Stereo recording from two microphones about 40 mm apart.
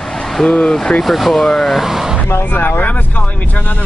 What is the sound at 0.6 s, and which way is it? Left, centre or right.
Speech, centre.